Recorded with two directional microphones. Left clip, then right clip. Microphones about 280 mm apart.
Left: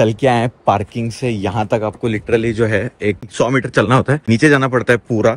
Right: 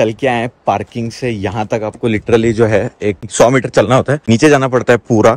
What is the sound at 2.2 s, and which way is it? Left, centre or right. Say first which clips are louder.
Speech: right 5 dB; right.